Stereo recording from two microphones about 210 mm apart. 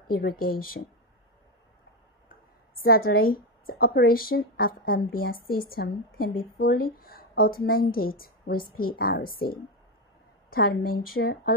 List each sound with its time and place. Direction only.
0.1 s speech: 45° left (ahead or behind)
2.8 s speech: 45° left (ahead or behind)